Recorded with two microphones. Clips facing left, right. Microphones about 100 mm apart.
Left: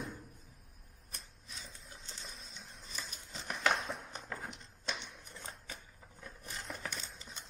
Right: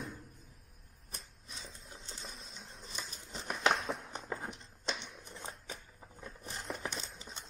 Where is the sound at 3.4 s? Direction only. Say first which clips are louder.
Right 2 dB; 5° right (ahead or behind).